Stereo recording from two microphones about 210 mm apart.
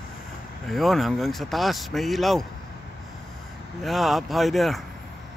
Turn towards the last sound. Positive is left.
turn(degrees=0)  # may be behind; listen again after turning